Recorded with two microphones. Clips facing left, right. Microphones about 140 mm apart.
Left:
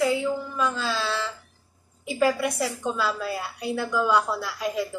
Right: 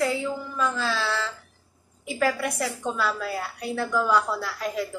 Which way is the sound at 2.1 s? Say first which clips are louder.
Left 2 dB; 15° left (ahead or behind).